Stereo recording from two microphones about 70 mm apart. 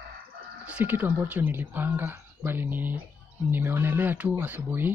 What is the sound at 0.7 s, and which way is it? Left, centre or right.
Speech, right.